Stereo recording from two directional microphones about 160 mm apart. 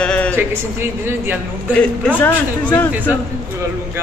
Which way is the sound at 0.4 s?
15° right (ahead or behind).